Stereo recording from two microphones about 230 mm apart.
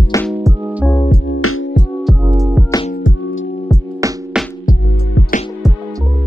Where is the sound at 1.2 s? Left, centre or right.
Left.